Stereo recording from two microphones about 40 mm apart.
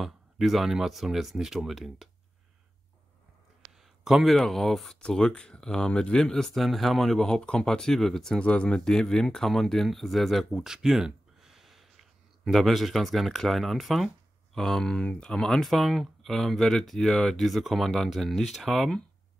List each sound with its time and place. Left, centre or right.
0.0 s speech: centre
3.8 s a sound: centre
4.4 s speech: centre
5.0 s speech: centre
8.4 s speech: left
8.6 s speech: centre
10.5 s a sound: centre
13.4 s speech: centre
14.6 s speech: centre
15.2 s speech: centre
17.4 s speech: centre